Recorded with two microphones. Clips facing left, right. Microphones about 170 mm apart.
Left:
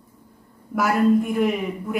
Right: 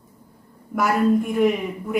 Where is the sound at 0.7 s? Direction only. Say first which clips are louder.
Left 1 dB; centre (ahead or behind).